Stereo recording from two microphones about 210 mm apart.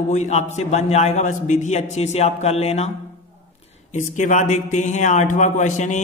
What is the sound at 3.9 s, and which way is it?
A man's voice, 35° left (ahead or behind).